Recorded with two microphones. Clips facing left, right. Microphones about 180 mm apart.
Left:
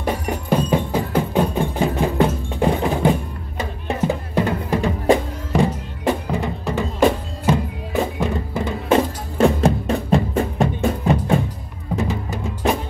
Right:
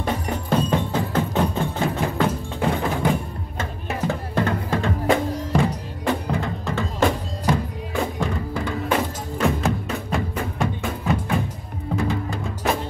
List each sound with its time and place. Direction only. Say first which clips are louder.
0.0 s music: left 2 dB; 10° left (ahead or behind)
4.1 s drum: even; 15° left (ahead or behind)
6.0 s music: left 3 dB; 15° left (ahead or behind); by 11.3 s 35° left (ahead or behind)
11.9 s music: left 1 dB; 20° left (ahead or behind)